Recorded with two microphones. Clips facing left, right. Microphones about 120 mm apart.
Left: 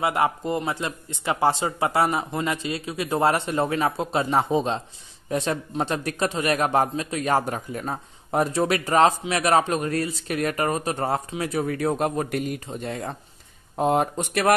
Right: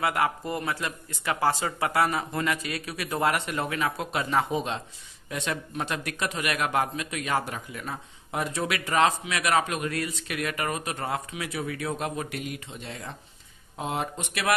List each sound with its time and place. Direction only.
0.0 s speech: 25° left (ahead or behind); by 14.5 s 45° left (ahead or behind)